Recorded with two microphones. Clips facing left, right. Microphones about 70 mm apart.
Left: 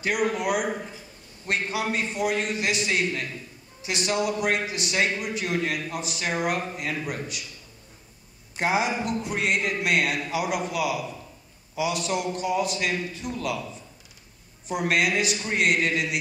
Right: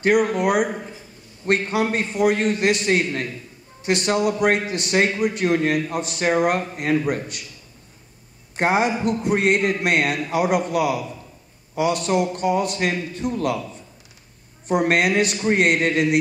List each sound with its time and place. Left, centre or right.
0.0 s a man's voice: right
8.5 s a man's voice: right
14.7 s a man's voice: right